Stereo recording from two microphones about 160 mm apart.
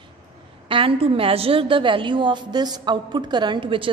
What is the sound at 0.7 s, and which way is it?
A woman's voice, 35° right (ahead or behind).